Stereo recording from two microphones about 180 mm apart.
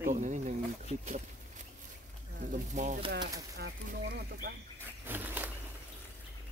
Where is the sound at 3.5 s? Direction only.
60° right (ahead or behind).